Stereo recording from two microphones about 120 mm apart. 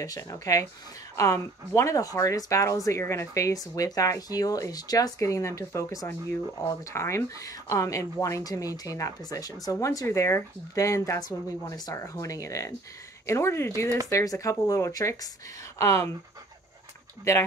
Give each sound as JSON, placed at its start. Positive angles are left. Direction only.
{"t": 0.0, "sound": "speech", "side_deg": 30}